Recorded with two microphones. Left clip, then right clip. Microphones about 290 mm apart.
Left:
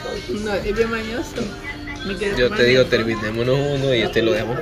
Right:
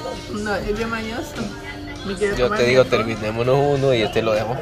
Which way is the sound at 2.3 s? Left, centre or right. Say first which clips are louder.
Left 1 dB; centre.